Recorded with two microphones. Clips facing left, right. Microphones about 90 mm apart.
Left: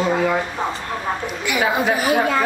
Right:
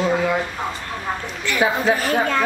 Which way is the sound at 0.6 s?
25° left (ahead or behind).